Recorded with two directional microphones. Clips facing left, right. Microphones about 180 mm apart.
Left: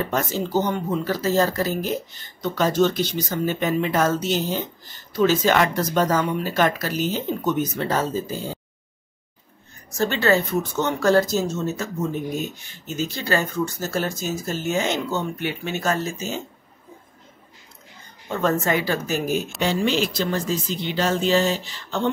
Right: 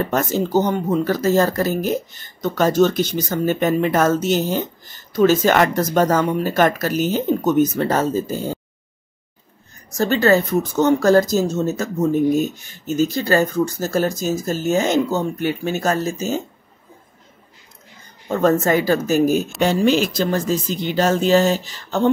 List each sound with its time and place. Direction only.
0.1 s speech: 45° right (ahead or behind)
9.9 s speech: 40° right (ahead or behind)
18.3 s speech: 40° right (ahead or behind)